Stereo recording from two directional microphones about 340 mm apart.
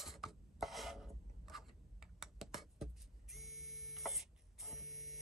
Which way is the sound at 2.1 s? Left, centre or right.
Centre.